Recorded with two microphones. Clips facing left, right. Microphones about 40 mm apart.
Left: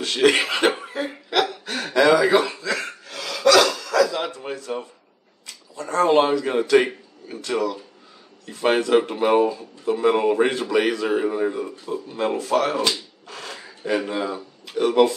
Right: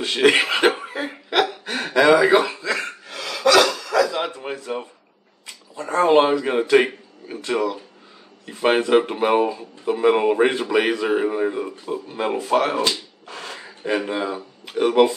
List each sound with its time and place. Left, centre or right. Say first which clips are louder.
0.0 s speech: right 1 dB; centre
0.7 s cough: right 2 dB; centre
2.0 s a sound: right 2 dB; centre
8.5 s speech: right 1 dB; centre